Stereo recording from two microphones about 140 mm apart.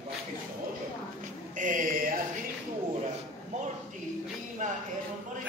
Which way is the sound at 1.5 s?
70° right (ahead or behind).